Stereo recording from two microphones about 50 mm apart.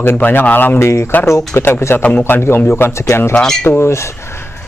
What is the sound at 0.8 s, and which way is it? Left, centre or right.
Speech, left.